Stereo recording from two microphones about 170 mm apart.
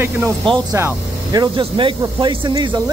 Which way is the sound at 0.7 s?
20° right (ahead or behind).